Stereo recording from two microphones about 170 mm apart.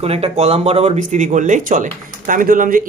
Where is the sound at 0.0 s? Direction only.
35° right (ahead or behind).